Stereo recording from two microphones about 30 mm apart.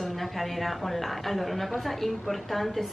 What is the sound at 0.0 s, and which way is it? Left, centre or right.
A woman's voice, centre.